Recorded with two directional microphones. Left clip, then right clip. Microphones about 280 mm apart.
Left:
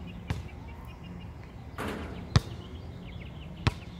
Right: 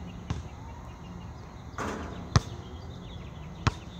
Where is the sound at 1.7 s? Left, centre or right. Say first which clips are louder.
Right 2 dB; centre.